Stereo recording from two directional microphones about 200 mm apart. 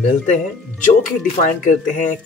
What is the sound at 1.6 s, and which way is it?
Speech, 40° left (ahead or behind).